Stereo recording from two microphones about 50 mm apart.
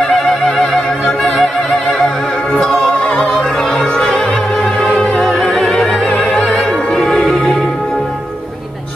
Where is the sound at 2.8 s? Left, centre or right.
Left.